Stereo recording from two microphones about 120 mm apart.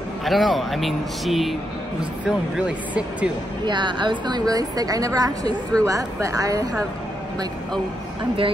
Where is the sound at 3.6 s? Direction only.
40° right (ahead or behind).